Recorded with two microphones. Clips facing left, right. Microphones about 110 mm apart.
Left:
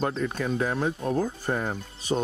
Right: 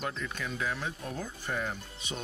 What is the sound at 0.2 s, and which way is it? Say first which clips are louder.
Speech: left 9 dB; 40° left (ahead or behind).